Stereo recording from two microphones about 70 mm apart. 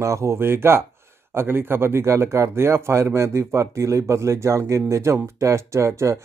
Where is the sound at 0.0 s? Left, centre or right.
Right.